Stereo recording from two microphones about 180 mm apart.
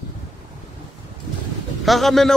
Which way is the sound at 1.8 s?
Centre (ahead or behind).